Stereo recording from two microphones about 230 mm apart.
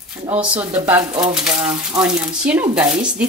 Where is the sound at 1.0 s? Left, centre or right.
Centre.